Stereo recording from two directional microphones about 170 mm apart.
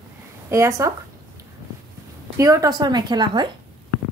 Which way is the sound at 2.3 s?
20° right (ahead or behind).